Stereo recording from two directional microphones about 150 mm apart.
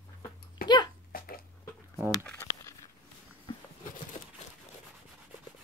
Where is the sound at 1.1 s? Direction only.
75° left (ahead or behind).